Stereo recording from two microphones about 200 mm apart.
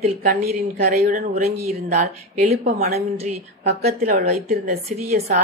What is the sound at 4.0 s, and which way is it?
Speech, 40° right (ahead or behind).